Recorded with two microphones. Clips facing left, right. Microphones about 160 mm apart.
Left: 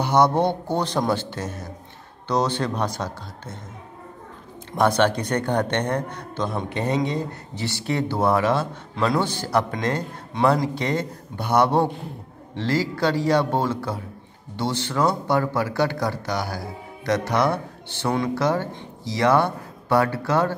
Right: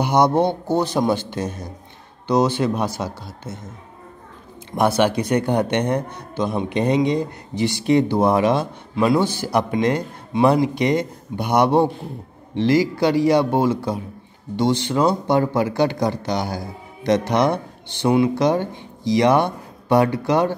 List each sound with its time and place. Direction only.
0.0 s speech: 15° right (ahead or behind)
4.7 s speech: 10° right (ahead or behind)